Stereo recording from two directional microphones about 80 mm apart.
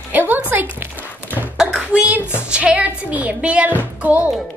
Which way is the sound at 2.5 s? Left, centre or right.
Centre.